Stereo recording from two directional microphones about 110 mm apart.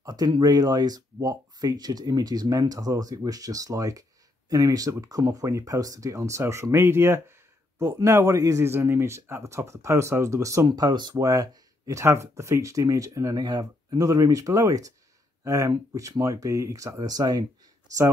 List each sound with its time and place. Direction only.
0.0 s speech: 35° right (ahead or behind)
10.7 s speech: 40° right (ahead or behind)